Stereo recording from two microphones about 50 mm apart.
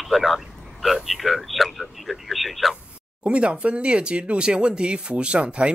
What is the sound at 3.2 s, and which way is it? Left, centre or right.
Speech, right.